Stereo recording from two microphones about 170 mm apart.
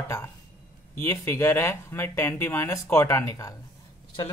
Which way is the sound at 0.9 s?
15° left (ahead or behind).